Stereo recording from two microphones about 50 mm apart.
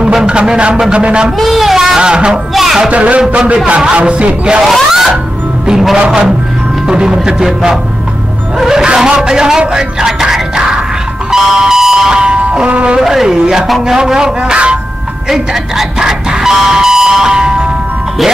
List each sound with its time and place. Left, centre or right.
0.0 s speech: centre
1.4 s a man's voice: centre
2.0 s speech: centre
2.5 s music: centre
2.9 s speech: right
4.9 s music: centre
5.7 s a man's voice: centre
8.8 s speech: centre
11.3 s a sound: centre
12.6 s speech: right
12.9 s speech: centre